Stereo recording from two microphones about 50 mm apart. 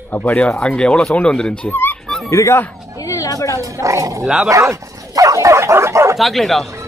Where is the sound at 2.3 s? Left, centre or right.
Left.